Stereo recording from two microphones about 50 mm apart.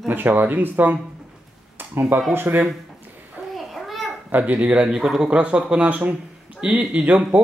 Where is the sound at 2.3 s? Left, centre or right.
Right.